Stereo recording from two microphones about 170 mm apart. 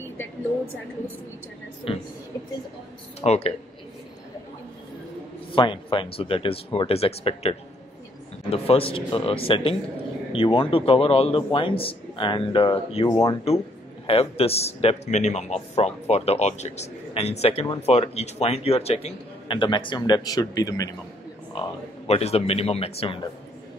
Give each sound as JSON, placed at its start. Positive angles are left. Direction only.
{"t": 1.9, "sound": "a man's voice", "side_deg": 35}
{"t": 3.2, "sound": "a man's voice", "side_deg": 40}
{"t": 5.5, "sound": "a man's voice", "side_deg": 30}
{"t": 21.5, "sound": "a man's voice", "side_deg": 35}